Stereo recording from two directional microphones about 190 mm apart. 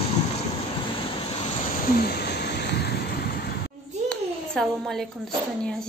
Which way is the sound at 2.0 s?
60° left (ahead or behind).